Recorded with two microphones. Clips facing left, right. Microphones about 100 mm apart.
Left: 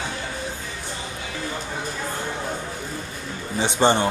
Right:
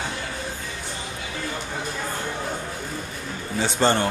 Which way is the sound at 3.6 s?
20° left (ahead or behind).